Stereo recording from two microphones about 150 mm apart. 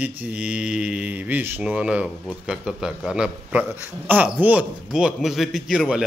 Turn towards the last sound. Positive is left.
turn(degrees=-5)  # may be behind; listen again after turning